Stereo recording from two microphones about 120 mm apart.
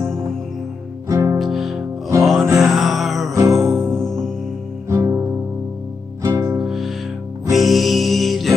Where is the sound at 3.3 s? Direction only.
25° right (ahead or behind).